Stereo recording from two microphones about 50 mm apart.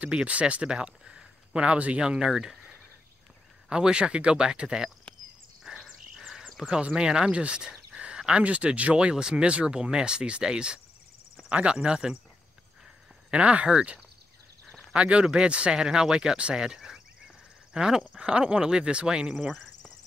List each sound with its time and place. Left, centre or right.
0.0 s speech: right
5.6 s cricket: centre
6.7 s speech: centre
7.9 s a sound: right
8.2 s speech: right
13.3 s speech: right